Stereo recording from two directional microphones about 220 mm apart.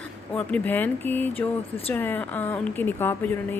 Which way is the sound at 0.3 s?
5° left (ahead or behind).